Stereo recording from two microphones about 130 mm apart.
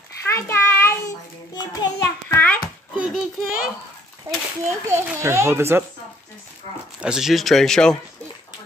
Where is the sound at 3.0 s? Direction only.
5° right (ahead or behind).